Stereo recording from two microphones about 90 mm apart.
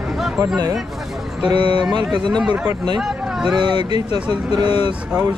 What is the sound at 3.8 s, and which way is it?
Speech, 55° right (ahead or behind).